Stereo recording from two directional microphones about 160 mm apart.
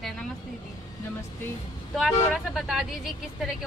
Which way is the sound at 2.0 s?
Centre (ahead or behind).